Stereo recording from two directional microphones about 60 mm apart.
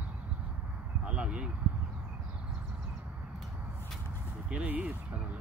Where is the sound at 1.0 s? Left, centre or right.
Centre.